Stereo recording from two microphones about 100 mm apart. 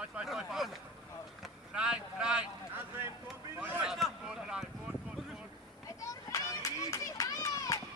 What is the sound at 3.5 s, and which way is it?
Speech, 20° right (ahead or behind).